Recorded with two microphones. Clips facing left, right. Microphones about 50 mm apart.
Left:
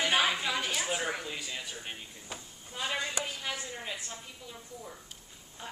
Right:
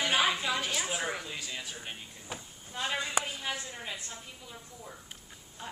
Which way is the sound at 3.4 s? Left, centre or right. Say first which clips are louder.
Even; centre.